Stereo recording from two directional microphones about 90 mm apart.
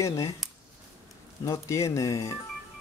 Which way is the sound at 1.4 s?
35° left (ahead or behind).